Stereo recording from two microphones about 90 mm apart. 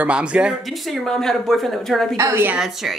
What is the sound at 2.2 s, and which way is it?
Speech, 35° right (ahead or behind).